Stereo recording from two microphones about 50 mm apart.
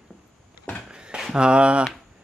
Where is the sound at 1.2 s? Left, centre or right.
Centre.